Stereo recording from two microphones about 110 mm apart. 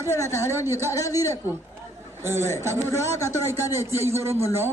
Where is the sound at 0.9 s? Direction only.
30° left (ahead or behind).